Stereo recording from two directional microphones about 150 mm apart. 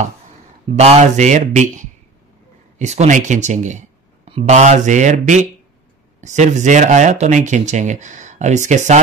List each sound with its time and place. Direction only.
0.7 s speech: 45° right (ahead or behind)